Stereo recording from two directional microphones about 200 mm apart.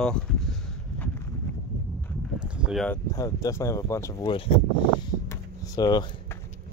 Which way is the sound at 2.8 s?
15° left (ahead or behind).